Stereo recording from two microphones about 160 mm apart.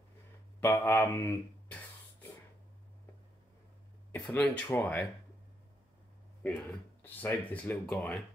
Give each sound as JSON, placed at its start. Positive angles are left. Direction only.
{"t": 0.6, "sound": "speech", "side_deg": 15}
{"t": 4.1, "sound": "speech", "side_deg": 10}
{"t": 6.4, "sound": "speech", "side_deg": 10}